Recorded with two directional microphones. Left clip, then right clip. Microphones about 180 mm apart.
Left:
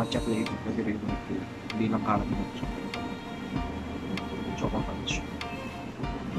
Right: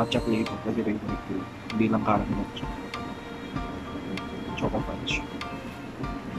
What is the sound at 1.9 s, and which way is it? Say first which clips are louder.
Speech: right 3 dB; 5° right (ahead or behind).